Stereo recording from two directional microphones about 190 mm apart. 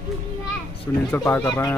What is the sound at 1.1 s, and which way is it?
Speech, 10° left (ahead or behind).